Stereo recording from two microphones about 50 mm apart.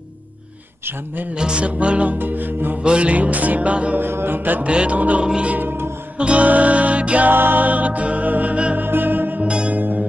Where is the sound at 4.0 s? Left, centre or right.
Right.